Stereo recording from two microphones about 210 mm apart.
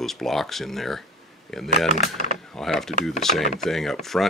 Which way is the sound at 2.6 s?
Centre (ahead or behind).